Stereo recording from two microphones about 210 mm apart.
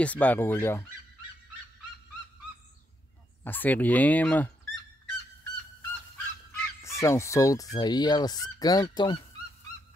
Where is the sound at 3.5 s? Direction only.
10° left (ahead or behind).